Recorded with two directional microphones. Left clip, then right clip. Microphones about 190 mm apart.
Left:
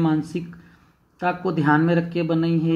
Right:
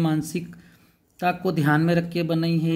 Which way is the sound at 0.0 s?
55° right (ahead or behind).